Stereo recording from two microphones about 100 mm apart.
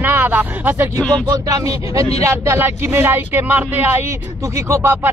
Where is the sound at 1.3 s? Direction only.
35° right (ahead or behind).